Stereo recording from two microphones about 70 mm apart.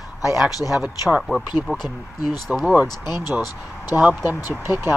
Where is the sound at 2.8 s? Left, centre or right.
Left.